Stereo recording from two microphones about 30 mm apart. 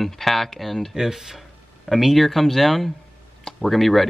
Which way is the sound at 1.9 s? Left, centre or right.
Centre.